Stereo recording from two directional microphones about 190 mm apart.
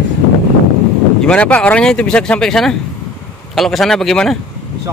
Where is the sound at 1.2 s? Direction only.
5° left (ahead or behind).